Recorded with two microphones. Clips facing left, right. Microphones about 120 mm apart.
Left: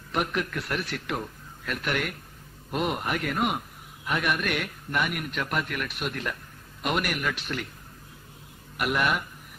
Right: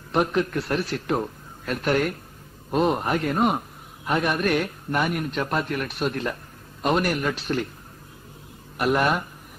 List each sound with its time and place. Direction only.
0.1 s a man's voice: 30° right (ahead or behind)
8.7 s a man's voice: 35° right (ahead or behind)